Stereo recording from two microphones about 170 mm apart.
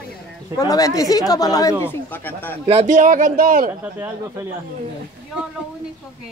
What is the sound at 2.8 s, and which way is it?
Speech, 50° right (ahead or behind).